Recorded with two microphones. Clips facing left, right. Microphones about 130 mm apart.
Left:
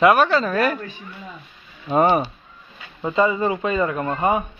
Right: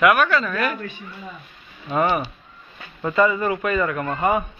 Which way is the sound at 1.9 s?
30° left (ahead or behind).